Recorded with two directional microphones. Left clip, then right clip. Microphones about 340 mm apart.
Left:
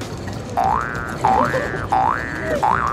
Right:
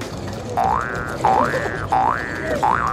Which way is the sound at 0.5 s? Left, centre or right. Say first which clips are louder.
Even; centre.